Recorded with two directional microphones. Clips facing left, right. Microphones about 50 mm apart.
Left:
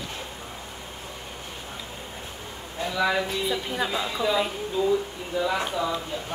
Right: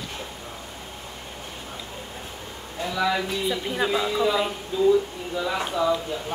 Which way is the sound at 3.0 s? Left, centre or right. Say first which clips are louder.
Even; centre.